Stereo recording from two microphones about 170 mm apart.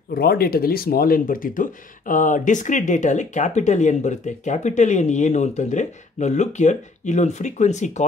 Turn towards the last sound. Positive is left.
turn(degrees=45)  # may be behind; listen again after turning